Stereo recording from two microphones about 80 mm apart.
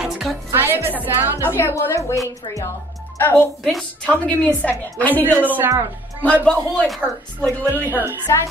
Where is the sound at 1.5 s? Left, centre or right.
Left.